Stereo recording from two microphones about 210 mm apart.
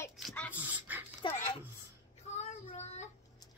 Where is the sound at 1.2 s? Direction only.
30° left (ahead or behind).